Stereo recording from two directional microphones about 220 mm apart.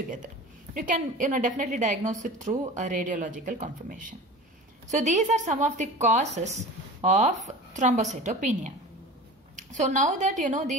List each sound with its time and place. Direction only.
0.7 s a woman's voice: 35° right (ahead or behind)